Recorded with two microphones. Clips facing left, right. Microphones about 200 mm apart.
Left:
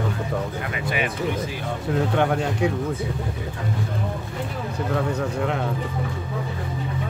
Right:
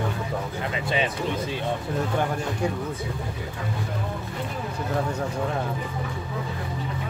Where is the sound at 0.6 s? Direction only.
25° right (ahead or behind).